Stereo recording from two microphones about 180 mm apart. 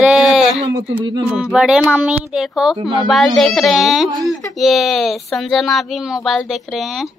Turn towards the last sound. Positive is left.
turn(degrees=0)  # may be behind; listen again after turning